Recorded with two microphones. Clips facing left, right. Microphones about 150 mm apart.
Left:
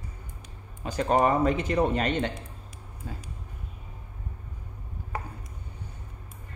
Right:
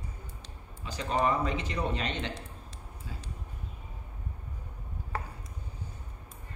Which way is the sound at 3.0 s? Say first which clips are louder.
Left 6 dB; 50° left (ahead or behind).